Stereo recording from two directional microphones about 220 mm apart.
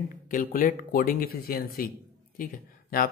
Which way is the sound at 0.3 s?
40° left (ahead or behind).